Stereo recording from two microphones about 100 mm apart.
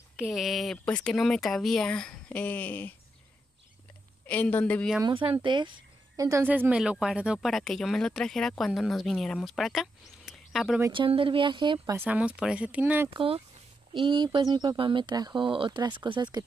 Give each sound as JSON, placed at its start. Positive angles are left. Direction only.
{"t": 0.1, "sound": "speech", "side_deg": -5}
{"t": 4.3, "sound": "speech", "side_deg": 15}
{"t": 5.0, "sound": "speech", "side_deg": -60}
{"t": 6.4, "sound": "speech", "side_deg": -15}
{"t": 6.8, "sound": "speech", "side_deg": -5}
{"t": 10.9, "sound": "speech", "side_deg": -60}
{"t": 12.1, "sound": "speech", "side_deg": -10}
{"t": 13.1, "sound": "speech", "side_deg": -65}